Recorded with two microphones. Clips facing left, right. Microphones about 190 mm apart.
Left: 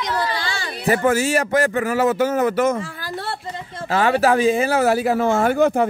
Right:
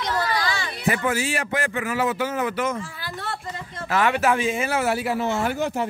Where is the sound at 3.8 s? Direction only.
30° left (ahead or behind); by 5.9 s 55° left (ahead or behind).